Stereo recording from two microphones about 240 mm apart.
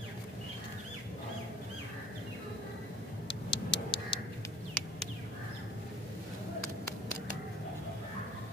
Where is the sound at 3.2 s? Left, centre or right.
Left.